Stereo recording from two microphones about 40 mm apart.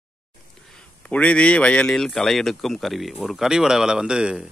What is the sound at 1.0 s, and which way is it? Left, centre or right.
Speech, left.